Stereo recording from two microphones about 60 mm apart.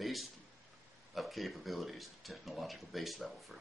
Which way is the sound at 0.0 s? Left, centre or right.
Centre.